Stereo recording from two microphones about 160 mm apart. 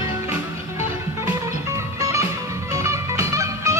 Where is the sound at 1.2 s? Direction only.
20° right (ahead or behind).